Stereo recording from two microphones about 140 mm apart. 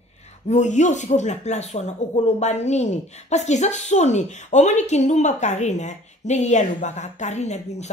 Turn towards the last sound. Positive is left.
turn(degrees=55)  # may be behind; listen again after turning